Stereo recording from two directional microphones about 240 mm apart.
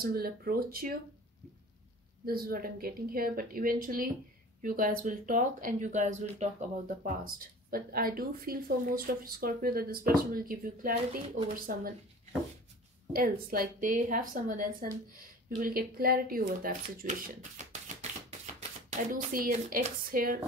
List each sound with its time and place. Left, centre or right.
0.0 s speech: right
2.2 s speech: right
13.1 s speech: right